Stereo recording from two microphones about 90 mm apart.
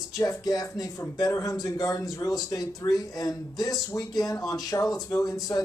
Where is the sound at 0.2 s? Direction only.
40° left (ahead or behind).